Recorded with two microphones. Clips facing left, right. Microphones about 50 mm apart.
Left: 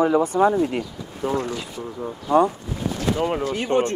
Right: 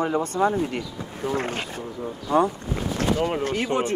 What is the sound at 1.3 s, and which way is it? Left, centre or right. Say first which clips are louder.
Speech: left 1 dB; right.